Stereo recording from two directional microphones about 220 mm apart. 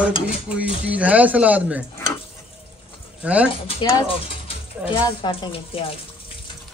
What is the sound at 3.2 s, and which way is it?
Mechanisms, 5° right (ahead or behind).